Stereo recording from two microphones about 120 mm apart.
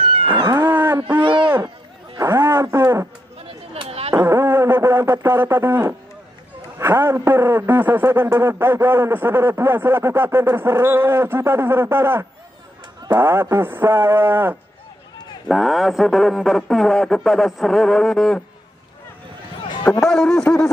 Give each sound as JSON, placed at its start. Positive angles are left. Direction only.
{"t": 0.4, "sound": "cat", "side_deg": -30}
{"t": 0.7, "sound": "wail", "side_deg": -20}
{"t": 1.1, "sound": "a sound", "side_deg": -40}
{"t": 2.1, "sound": "radio", "side_deg": -20}
{"t": 3.3, "sound": "chatter", "side_deg": -50}
{"t": 4.1, "sound": "a sound", "side_deg": -20}
{"t": 6.8, "sound": "a man's voice", "side_deg": -20}
{"t": 15.4, "sound": "speech", "side_deg": 0}
{"t": 19.8, "sound": "speech", "side_deg": 5}